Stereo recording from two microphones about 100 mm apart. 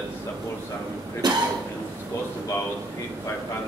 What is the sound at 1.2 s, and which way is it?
Speech, 45° right (ahead or behind).